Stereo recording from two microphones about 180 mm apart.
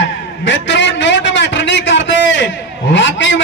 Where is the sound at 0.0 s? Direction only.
85° left.